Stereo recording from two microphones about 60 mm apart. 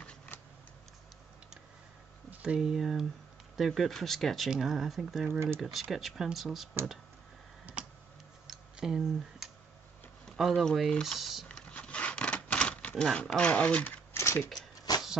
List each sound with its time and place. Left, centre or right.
0.3 s a sound: left
2.3 s speech: centre
2.7 s speech: centre
8.5 s tick: centre
10.3 s speech: centre
11.1 s speech: centre
11.8 s rub: centre
13.2 s speech: left
14.1 s a sound: left
14.9 s a sound: left